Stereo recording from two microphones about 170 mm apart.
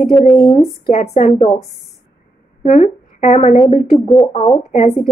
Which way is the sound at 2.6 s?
40° left (ahead or behind).